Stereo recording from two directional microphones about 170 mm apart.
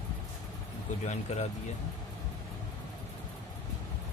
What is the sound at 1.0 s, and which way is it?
Speech, 40° left (ahead or behind).